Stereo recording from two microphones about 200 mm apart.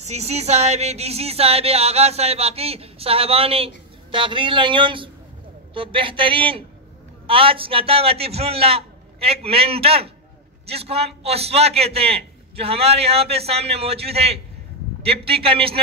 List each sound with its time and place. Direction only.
0.0 s a man's voice: 30° right (ahead or behind)